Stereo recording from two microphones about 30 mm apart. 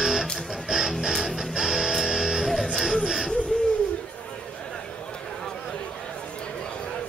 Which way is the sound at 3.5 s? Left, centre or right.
Left.